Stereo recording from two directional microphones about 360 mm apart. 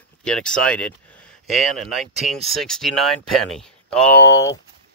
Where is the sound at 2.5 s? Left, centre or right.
Centre.